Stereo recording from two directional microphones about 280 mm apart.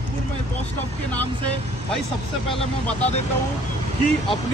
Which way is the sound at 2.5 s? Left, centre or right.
Left.